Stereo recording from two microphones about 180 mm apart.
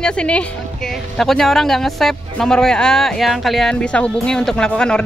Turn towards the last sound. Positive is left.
turn(degrees=5)  # may be behind; listen again after turning